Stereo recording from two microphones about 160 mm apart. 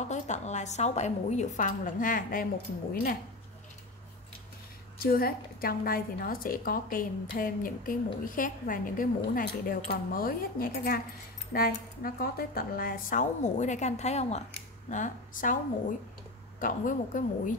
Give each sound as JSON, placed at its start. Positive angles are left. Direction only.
{"t": 0.0, "sound": "a woman's voice", "side_deg": 45}
{"t": 4.9, "sound": "a woman's voice", "side_deg": 70}